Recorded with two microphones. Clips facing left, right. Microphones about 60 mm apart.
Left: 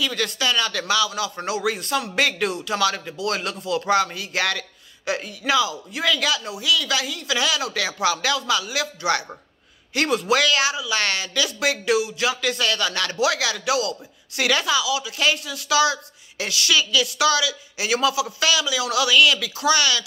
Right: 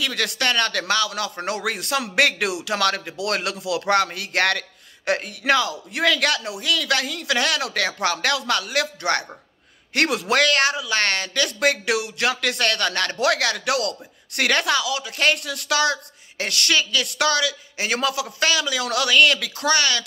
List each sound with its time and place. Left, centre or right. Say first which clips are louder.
0.0 s a man's voice: even; right
9.9 s speech: even; right